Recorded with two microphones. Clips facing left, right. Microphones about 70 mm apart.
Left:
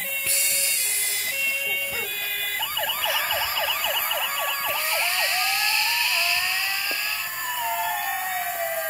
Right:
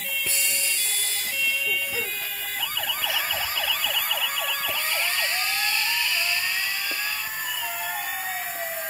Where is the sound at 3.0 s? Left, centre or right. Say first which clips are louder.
Left 3 dB; left.